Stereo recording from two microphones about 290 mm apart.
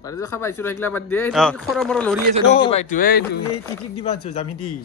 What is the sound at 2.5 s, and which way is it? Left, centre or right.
Speech, left.